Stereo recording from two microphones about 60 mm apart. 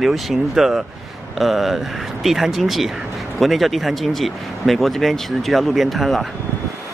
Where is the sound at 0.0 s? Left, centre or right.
Centre.